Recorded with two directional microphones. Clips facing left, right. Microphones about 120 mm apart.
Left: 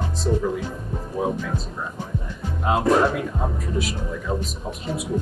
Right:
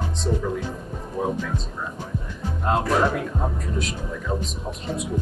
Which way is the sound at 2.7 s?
5° left (ahead or behind).